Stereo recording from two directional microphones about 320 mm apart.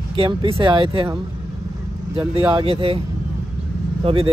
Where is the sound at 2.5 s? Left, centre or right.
Centre.